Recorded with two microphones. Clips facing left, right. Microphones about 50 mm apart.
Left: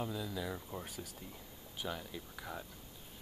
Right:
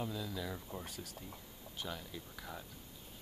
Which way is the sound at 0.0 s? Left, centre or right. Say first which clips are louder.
Left 1 dB; centre.